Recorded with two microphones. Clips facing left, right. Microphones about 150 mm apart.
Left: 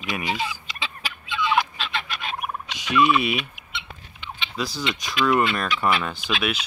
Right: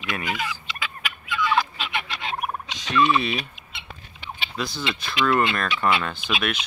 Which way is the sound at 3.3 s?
40° right (ahead or behind).